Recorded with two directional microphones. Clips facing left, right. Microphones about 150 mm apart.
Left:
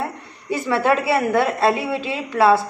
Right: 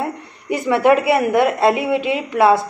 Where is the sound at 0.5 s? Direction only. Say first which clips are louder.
Right 4 dB; 20° right (ahead or behind).